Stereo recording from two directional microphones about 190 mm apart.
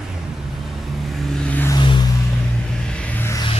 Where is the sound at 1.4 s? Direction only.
10° left (ahead or behind).